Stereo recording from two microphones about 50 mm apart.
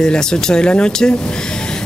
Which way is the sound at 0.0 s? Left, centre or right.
Centre.